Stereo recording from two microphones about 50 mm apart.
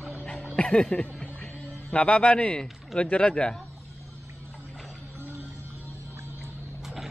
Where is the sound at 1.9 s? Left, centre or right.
Left.